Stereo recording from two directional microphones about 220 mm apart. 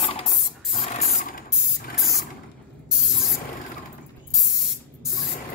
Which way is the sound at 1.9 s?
Centre (ahead or behind).